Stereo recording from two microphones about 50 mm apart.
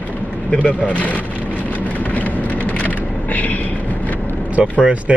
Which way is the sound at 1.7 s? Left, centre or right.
Left.